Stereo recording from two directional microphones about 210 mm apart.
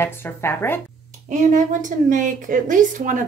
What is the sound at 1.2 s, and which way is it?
A woman's voice, 40° right (ahead or behind).